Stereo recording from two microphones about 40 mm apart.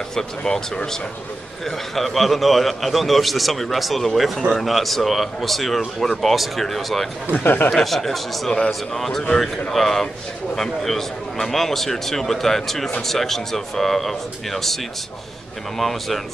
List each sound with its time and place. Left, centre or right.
0.4 s a man's voice: left
2.0 s a man's voice: centre
7.4 s speech: left
7.7 s a man's voice: centre
8.5 s a man's voice: centre
9.3 s a man's voice: centre
15.8 s a man's voice: centre